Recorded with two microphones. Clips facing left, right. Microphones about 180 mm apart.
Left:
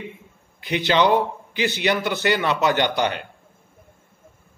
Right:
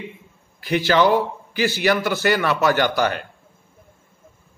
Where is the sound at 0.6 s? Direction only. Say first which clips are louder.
Right 2 dB; 20° left (ahead or behind).